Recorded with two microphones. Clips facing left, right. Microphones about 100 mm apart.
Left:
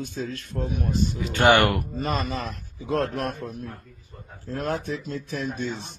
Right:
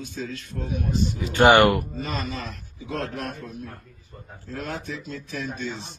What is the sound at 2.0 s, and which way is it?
A man's voice, 55° left (ahead or behind).